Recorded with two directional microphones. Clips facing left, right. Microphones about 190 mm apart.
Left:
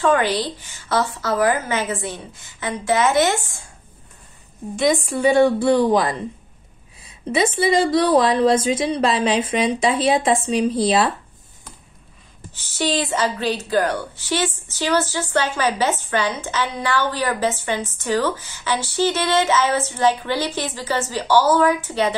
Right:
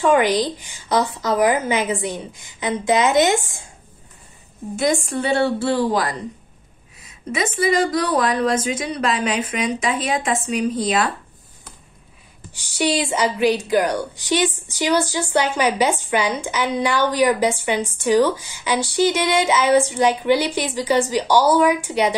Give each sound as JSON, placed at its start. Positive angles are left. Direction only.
{"t": 0.0, "sound": "a woman's voice", "side_deg": -15}
{"t": 4.7, "sound": "a woman's voice", "side_deg": 0}
{"t": 12.7, "sound": "a woman's voice", "side_deg": -15}